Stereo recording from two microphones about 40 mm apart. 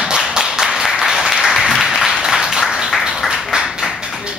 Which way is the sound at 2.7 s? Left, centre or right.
Centre.